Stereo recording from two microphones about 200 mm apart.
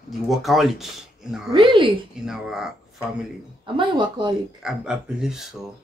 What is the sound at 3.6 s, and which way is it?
Speech, 25° right (ahead or behind).